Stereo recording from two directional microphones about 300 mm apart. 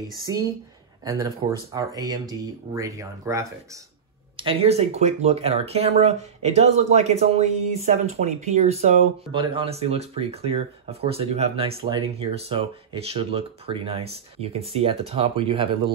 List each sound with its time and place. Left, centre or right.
1.0 s speech: centre